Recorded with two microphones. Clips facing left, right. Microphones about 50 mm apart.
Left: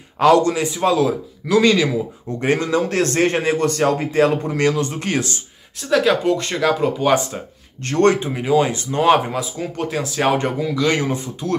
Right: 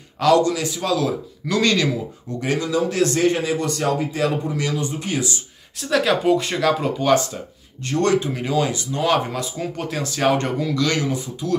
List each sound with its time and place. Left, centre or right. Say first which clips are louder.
0.2 s a man's voice: left 3 dB; left
1.0 s speech: left 3 dB; centre
2.4 s a man's voice: left 3 dB; left
5.8 s speech: left 3 dB; centre
7.8 s a man's voice: left 3 dB; left
8.4 s speech: left 5 dB; centre
8.6 s a man's voice: left 5 dB; left
9.4 s speech: left 2 dB; centre
10.9 s a man's voice: left 3 dB; left